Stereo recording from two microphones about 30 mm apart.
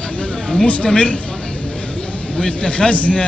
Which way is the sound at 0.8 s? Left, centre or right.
Left.